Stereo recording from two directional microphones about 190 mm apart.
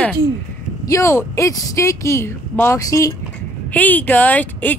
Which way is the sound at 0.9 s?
15° left (ahead or behind).